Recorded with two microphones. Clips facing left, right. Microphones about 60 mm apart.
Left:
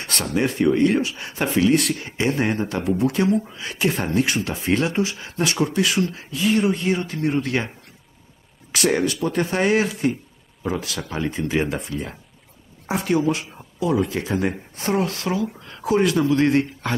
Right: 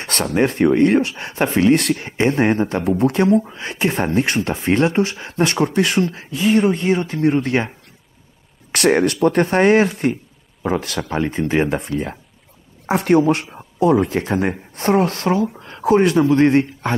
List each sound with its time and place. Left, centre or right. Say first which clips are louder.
0.0 s speech: right 5 dB; right
8.7 s speech: right 5 dB; right